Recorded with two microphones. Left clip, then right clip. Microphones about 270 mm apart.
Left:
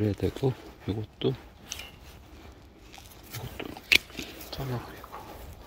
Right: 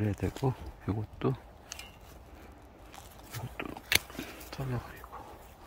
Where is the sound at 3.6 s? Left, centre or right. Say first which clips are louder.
Left 6 dB; centre.